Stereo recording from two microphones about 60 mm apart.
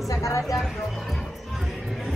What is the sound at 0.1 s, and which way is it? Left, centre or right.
Speech, left.